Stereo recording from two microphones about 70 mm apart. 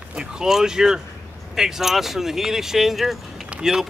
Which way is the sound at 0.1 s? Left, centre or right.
Centre.